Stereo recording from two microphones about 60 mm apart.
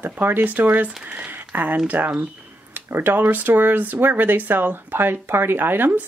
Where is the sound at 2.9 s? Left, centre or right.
Right.